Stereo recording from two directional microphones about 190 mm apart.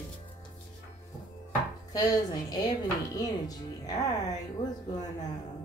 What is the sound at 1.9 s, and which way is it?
Speech, 20° left (ahead or behind).